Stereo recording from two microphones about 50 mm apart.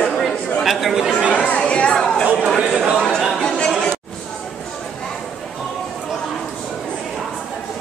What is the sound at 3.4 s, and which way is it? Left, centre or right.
Chatter, centre.